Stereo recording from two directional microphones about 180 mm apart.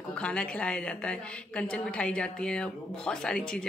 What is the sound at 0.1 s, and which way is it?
A woman's voice, 5° left (ahead or behind).